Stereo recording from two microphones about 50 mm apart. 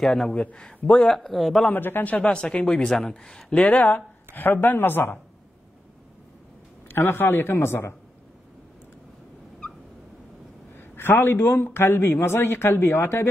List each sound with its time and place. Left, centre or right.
0.0 s speech: centre
1.7 s a man's voice: left
2.1 s speech: centre
3.5 s a man's voice: left
6.9 s a man's voice: left
10.8 s a man's voice: left